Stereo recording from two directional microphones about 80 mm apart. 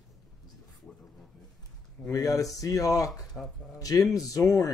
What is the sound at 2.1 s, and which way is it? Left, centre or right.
Speech, left.